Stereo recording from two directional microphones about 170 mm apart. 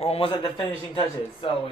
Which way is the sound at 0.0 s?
35° left (ahead or behind).